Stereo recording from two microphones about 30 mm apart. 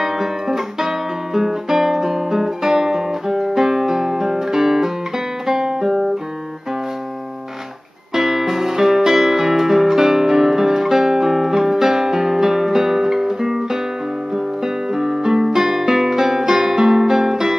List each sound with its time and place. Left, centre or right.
0.0 s guitar: centre
8.1 s music: centre